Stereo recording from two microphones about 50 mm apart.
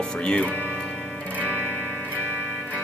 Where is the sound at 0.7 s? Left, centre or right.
Centre.